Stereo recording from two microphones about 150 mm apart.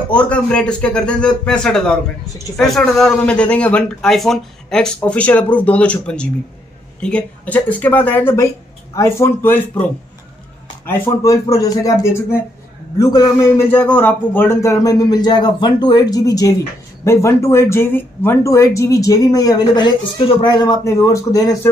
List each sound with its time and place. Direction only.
0.1 s speech: 10° left (ahead or behind)
10.9 s speech: 20° left (ahead or behind)